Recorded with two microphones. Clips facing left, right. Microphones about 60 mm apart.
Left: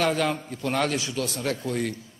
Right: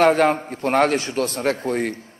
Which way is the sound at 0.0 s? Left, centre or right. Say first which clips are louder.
Right 8 dB; right.